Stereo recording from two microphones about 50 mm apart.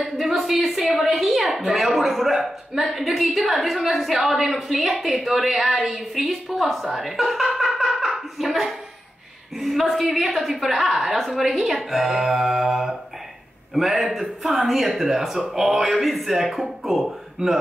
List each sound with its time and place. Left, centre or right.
0.0 s a woman's voice: centre
0.9 s a sound: centre
1.8 s a woman's voice: centre
17.4 s speech: centre